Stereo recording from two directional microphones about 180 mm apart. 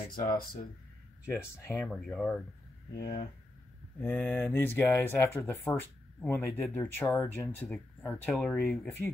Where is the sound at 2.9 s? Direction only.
60° left (ahead or behind).